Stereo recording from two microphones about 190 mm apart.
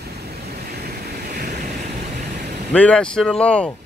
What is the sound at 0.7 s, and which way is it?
Waves, 55° right (ahead or behind).